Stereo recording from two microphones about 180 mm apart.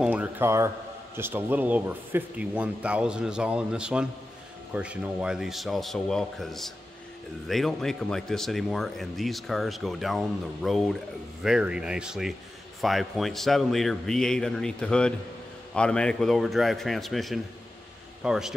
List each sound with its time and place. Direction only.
0.0 s a man's voice: 10° right (ahead or behind)